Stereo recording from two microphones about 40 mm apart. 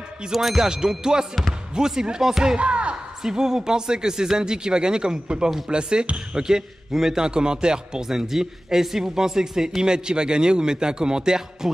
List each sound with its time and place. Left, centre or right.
0.3 s speech: centre
0.7 s speech: centre
2.5 s a sound: right
3.2 s speech: centre